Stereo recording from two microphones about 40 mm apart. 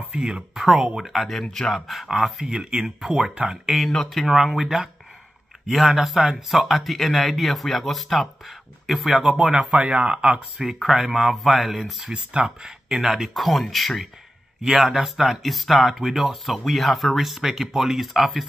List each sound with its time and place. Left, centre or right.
0.1 s speech: right
0.7 s speech: centre
1.0 s speech: centre
2.4 s speech: centre
4.1 s speech: centre
9.7 s speech: right
10.0 s speech: right
10.7 s speech: centre
12.4 s speech: centre